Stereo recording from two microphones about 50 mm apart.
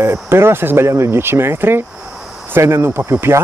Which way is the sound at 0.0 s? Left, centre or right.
Right.